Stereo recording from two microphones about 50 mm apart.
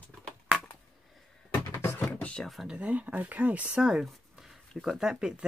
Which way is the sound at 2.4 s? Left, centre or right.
Centre.